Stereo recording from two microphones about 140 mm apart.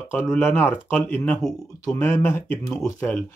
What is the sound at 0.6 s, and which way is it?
Speech, 15° left (ahead or behind).